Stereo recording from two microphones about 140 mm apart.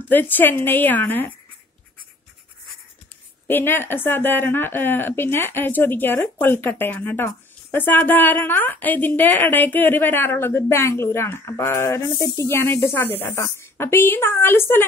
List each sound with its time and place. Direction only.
0.1 s a woman's voice: 15° left (ahead or behind)
3.4 s a woman's voice: 15° left (ahead or behind)